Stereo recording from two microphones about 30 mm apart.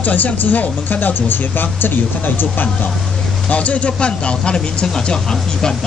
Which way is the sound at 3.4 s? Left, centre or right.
Left.